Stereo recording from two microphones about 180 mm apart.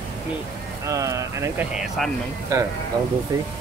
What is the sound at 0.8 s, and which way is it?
Speech, 15° right (ahead or behind).